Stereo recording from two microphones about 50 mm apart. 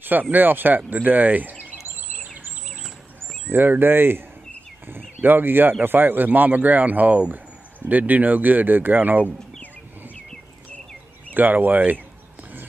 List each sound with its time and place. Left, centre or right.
0.0 s speech: right
3.5 s speech: right
11.3 s speech: right